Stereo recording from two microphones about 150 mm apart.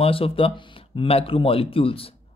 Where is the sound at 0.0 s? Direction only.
40° left (ahead or behind).